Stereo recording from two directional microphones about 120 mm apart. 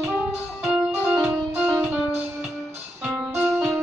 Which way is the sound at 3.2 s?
20° right (ahead or behind).